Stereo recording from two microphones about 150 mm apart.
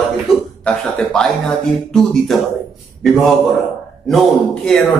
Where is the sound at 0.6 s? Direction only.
5° left (ahead or behind).